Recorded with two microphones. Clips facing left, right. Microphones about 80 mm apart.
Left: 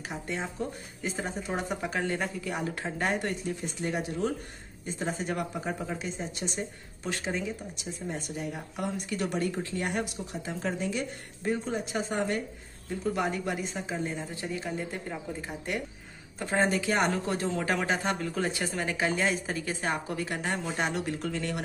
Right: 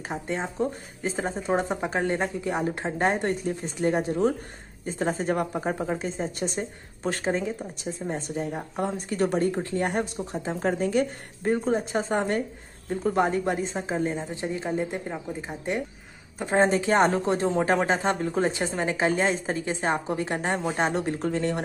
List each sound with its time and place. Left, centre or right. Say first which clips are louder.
0.1 s a woman's voice: right 5 dB; right
14.2 s speech: right 5 dB; right